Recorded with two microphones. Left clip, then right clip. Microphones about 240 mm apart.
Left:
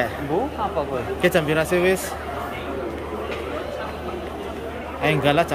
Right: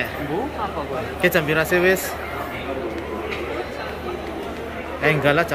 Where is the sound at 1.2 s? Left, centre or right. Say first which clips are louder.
Right 1 dB; centre.